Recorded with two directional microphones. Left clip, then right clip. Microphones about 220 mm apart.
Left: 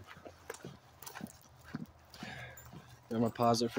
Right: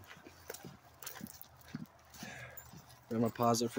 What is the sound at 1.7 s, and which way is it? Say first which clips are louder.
Dog: left 3 dB; 5° left (ahead or behind).